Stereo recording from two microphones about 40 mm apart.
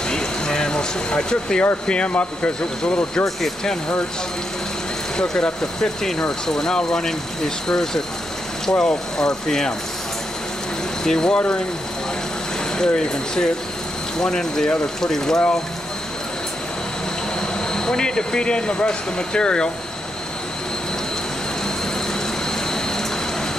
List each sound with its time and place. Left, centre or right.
0.1 s a sound: centre
1.9 s speech: left
2.8 s speech: left
5.1 s speech: centre
11.1 s speech: centre
11.3 s speech: left
12.7 s speech: centre
17.7 s speech: centre